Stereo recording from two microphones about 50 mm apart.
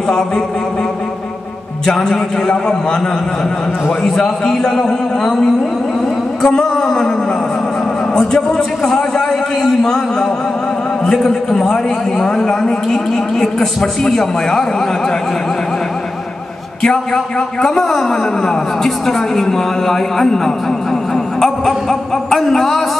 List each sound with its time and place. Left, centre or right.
1.9 s a man's voice: centre
4.0 s a man's voice: centre
8.1 s a man's voice: centre
16.8 s a man's voice: centre
21.4 s a sound: centre